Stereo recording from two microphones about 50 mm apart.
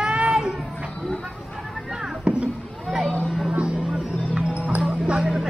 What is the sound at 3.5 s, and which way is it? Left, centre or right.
Music, right.